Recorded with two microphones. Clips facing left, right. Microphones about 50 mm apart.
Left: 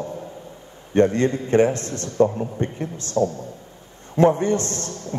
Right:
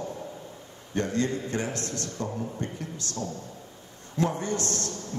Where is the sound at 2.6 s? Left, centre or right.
Left.